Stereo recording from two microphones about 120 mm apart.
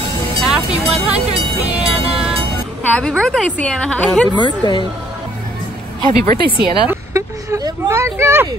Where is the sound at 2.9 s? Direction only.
5° left (ahead or behind).